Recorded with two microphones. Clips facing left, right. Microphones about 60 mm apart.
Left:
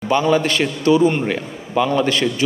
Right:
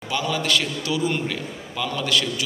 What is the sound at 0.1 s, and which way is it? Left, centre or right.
A man's voice, left.